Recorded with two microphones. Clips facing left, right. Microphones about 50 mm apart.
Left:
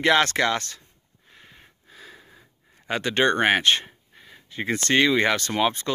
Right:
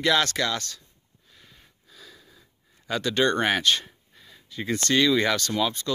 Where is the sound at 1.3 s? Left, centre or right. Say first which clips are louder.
Left 4 dB; left.